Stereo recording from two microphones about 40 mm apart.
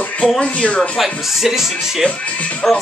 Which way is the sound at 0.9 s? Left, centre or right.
Centre.